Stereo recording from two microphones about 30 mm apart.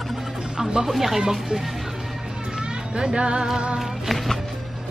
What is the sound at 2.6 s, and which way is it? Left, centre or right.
Music, right.